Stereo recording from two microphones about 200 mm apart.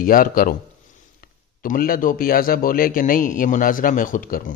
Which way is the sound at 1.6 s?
45° left (ahead or behind).